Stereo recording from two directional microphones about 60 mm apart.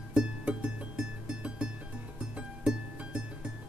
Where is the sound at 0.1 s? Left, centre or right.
Centre.